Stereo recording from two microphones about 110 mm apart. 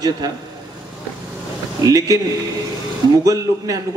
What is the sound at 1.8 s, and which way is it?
Speech, 35° right (ahead or behind).